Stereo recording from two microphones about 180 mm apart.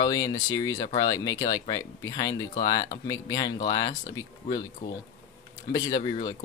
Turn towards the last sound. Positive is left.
turn(degrees=25)  # may be behind; listen again after turning